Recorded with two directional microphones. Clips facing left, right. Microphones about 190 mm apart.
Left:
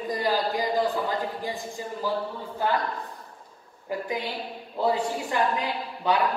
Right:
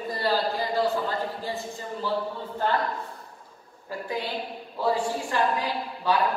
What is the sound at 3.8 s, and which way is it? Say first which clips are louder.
A woman's voice: left 1 dB; 20° left (ahead or behind).